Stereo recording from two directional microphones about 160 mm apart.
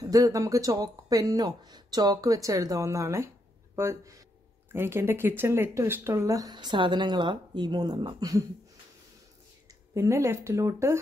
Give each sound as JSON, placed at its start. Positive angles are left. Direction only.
{"t": 0.0, "sound": "speech", "side_deg": -20}
{"t": 9.9, "sound": "speech", "side_deg": -20}